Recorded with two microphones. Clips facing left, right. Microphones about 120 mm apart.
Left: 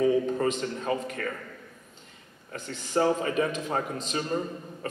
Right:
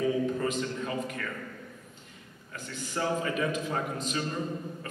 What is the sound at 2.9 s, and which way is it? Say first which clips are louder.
Speech: left 5 dB; 35° left (ahead or behind).